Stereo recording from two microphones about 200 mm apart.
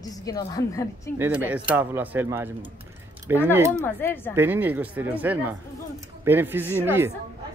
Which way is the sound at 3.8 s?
10° left (ahead or behind).